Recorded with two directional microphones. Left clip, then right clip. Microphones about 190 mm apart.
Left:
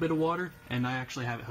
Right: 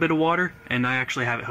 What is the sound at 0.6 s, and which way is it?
Speech, 5° right (ahead or behind).